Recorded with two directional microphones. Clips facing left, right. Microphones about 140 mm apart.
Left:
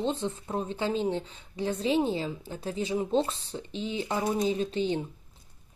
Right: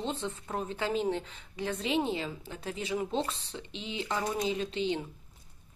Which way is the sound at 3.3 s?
40° left (ahead or behind).